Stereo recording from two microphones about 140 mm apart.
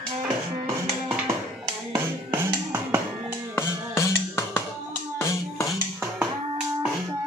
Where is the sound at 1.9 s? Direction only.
15° right (ahead or behind).